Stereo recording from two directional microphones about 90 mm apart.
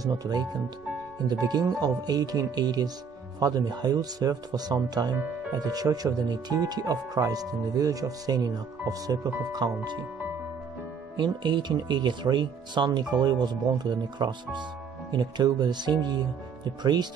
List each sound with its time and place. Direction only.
0.0 s speech: 50° right (ahead or behind)
11.1 s speech: 60° right (ahead or behind)